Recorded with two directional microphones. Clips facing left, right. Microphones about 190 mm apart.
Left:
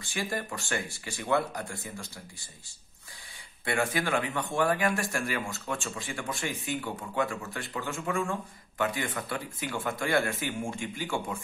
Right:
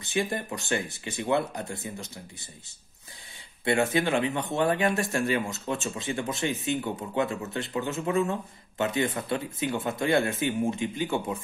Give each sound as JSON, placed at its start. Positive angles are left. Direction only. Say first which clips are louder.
{"t": 0.0, "sound": "speech", "louder": "right 5 dB", "side_deg": -20}
{"t": 3.6, "sound": "speech", "louder": "right 5 dB", "side_deg": -25}